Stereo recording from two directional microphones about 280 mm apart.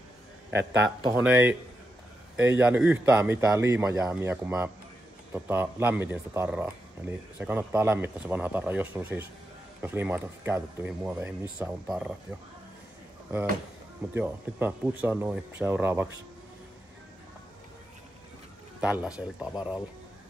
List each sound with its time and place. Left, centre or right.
0.5 s a man's voice: right
1.0 s speech: centre
14.1 s speech: centre
18.8 s speech: centre